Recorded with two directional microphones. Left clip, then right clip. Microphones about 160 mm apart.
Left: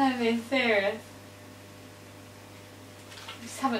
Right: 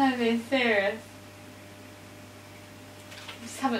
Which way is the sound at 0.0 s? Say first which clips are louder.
Right 1 dB; 5° right (ahead or behind).